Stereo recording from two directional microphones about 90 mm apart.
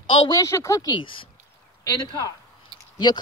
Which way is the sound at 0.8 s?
70° left (ahead or behind).